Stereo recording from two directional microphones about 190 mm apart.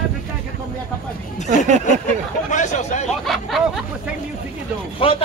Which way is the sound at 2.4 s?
40° left (ahead or behind).